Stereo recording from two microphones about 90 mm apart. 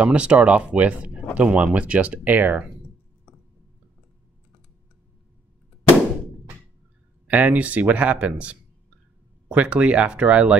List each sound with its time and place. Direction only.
0.0 s speech: 10° right (ahead or behind)
7.2 s speech: 20° right (ahead or behind)